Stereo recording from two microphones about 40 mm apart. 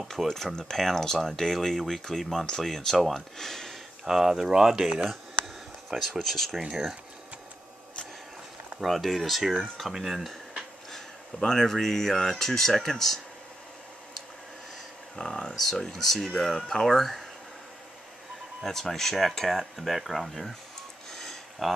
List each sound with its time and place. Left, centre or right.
0.1 s speech: centre
4.0 s speech: centre
6.2 s speech: centre
6.7 s speech: centre
8.8 s speech: centre
10.9 s speech: centre
15.1 s speech: centre
18.6 s speech: centre
21.1 s a sound: centre
21.6 s speech: centre